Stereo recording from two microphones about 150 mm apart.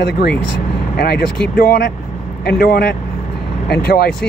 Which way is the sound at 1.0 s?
90° left.